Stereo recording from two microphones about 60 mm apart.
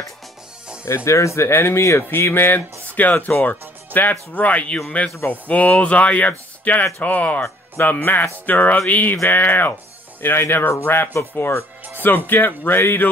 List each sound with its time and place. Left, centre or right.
0.8 s speech: left
2.0 s speech: left
9.1 s speech: left